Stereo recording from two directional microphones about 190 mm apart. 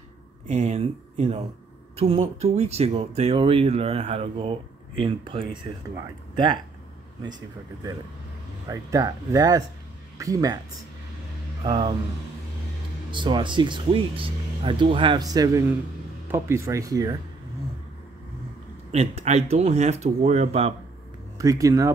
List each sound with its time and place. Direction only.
0.5 s speech: 35° right (ahead or behind)
7.2 s speech: 20° right (ahead or behind)
11.6 s speech: 25° right (ahead or behind)
13.1 s speech: 25° right (ahead or behind)
18.9 s speech: 35° right (ahead or behind)
21.4 s speech: 15° right (ahead or behind)